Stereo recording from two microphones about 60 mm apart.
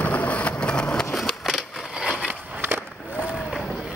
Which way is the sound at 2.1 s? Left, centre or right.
Centre.